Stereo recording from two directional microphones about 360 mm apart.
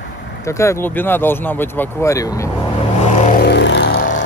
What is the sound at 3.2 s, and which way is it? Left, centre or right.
Music, left.